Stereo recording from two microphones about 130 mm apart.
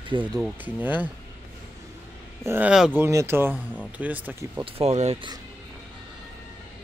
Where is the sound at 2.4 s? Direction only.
15° right (ahead or behind).